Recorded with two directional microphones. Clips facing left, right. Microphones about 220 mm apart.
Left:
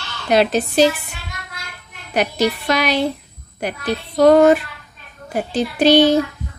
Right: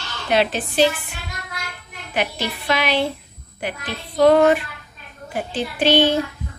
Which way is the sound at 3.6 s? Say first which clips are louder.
Left 6 dB; 40° left (ahead or behind).